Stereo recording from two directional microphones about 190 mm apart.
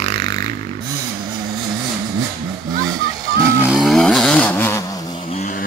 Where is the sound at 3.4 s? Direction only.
15° right (ahead or behind).